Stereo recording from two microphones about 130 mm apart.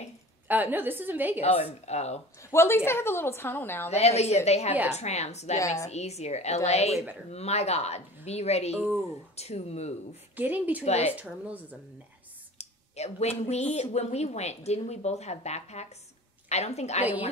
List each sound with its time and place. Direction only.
0.5 s a woman's voice: 15° right (ahead or behind)
1.4 s speech: 55° left (ahead or behind)
2.5 s a woman's voice: 20° left (ahead or behind)
3.9 s speech: 55° left (ahead or behind)
5.6 s a woman's voice: 25° left (ahead or behind)
5.9 s speech: 55° left (ahead or behind)
10.3 s a woman's voice: 15° right (ahead or behind)
10.8 s speech: 55° left (ahead or behind)
11.1 s a woman's voice: 10° right (ahead or behind)
12.5 s speech: 55° left (ahead or behind)